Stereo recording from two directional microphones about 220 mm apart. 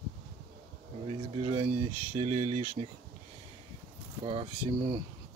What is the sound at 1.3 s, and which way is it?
Speech, 25° right (ahead or behind).